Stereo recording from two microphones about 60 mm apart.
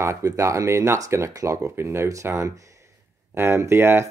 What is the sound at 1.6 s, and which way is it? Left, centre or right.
Speech, right.